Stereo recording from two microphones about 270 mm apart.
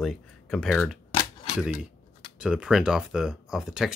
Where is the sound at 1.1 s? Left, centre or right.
Left.